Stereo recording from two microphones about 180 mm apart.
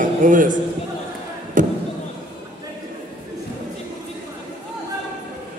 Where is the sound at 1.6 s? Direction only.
45° right (ahead or behind).